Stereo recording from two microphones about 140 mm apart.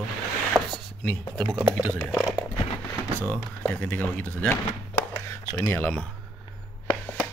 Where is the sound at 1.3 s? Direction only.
20° right (ahead or behind).